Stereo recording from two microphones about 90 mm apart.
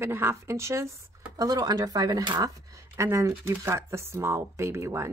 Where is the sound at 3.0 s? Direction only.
30° right (ahead or behind).